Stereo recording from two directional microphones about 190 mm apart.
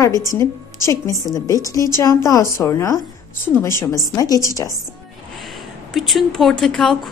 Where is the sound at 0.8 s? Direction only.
15° left (ahead or behind).